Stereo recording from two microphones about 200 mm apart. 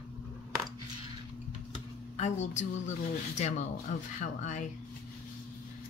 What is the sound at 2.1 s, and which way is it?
A woman's voice, 35° left (ahead or behind).